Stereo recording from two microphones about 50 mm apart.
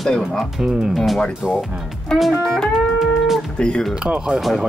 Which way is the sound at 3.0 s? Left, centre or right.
Centre.